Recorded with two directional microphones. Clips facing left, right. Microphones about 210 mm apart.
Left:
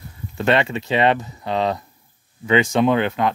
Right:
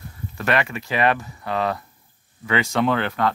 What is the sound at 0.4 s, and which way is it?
Speech, 25° left (ahead or behind).